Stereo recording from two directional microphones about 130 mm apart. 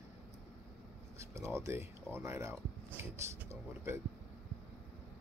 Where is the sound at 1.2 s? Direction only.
20° right (ahead or behind).